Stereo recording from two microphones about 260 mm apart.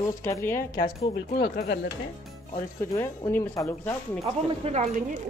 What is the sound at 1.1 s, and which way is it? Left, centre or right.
Speech, left.